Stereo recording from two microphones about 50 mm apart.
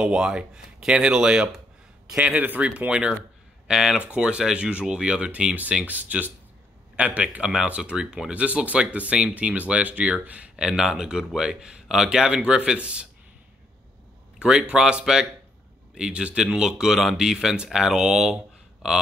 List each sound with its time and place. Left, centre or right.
0.0 s speech: centre
2.1 s speech: right
2.9 s speech: centre
10.5 s speech: centre
14.7 s speech: centre
16.5 s speech: centre